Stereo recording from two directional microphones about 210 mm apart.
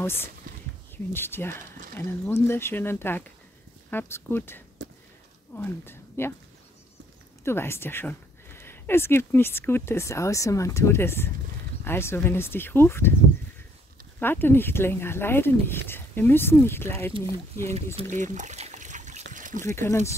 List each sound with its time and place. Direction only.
0.0 s a woman's voice: 10° left (ahead or behind)
7.4 s speech: 10° left (ahead or behind)
14.2 s speech: 10° left (ahead or behind)
17.1 s speech: 25° right (ahead or behind)
18.1 s trickle: 35° right (ahead or behind)
19.3 s a sound: 40° right (ahead or behind)
19.6 s speech: 10° left (ahead or behind)